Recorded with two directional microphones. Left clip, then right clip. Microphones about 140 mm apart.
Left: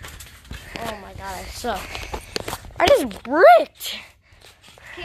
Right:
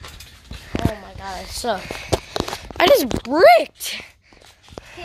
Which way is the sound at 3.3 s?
30° right (ahead or behind).